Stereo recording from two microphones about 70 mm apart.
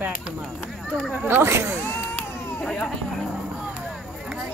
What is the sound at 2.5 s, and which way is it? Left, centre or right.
Speech, centre.